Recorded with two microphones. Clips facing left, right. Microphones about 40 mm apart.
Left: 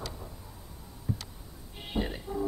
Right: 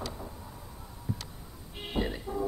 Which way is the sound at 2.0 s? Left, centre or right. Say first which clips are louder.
Right 1 dB; right.